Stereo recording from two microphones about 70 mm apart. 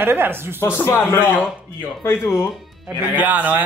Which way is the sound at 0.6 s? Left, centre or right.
Left.